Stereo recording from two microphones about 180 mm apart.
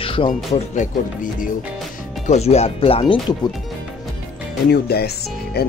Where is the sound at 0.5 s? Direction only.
40° left (ahead or behind).